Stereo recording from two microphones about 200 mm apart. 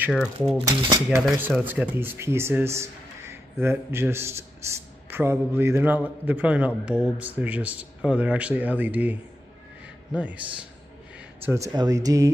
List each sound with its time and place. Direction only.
0.1 s speech: centre (ahead or behind)
0.7 s speech: 20° right (ahead or behind)
1.2 s speech: 5° right (ahead or behind)
11.4 s speech: 15° right (ahead or behind)